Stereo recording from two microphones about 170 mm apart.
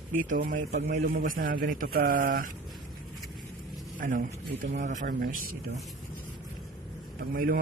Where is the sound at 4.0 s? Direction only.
50° right (ahead or behind).